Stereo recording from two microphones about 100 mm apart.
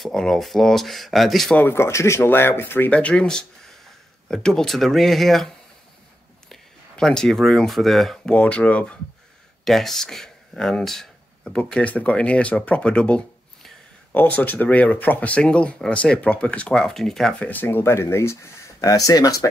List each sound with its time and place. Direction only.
0.0 s speech: 5° left (ahead or behind)
1.5 s speech: 20° left (ahead or behind); by 5.5 s centre (ahead or behind)
6.5 s speech: 5° left (ahead or behind)
8.3 s speech: 10° left (ahead or behind)
17.5 s speech: 20° left (ahead or behind); by 19.4 s 35° left (ahead or behind)